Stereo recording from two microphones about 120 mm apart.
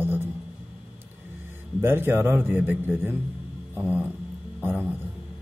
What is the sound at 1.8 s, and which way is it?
Speech, 20° right (ahead or behind).